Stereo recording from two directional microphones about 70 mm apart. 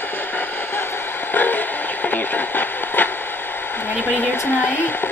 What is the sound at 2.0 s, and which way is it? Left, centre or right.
Radio, left.